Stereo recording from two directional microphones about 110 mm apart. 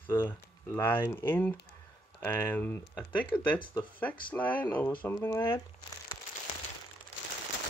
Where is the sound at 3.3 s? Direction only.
45° left (ahead or behind).